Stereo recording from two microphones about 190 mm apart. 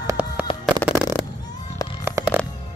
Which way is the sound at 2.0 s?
10° right (ahead or behind).